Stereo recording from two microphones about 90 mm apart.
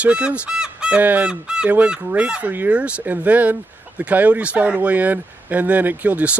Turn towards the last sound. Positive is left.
turn(degrees=-15)  # may be behind; listen again after turning